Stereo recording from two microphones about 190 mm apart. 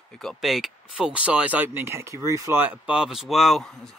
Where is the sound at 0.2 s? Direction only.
Centre (ahead or behind).